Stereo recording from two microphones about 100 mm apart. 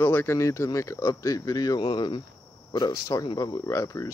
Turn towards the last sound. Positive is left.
turn(degrees=35)  # may be behind; listen again after turning